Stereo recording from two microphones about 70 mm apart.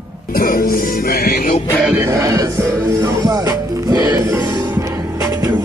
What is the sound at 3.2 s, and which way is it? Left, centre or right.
Music, right.